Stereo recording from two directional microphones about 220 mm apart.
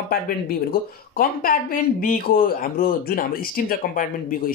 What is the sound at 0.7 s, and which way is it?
Speech, 40° left (ahead or behind).